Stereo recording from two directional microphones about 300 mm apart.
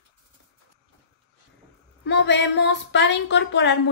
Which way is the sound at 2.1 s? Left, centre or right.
Left.